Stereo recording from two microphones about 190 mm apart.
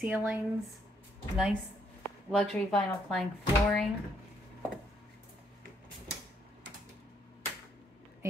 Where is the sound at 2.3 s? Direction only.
Centre (ahead or behind).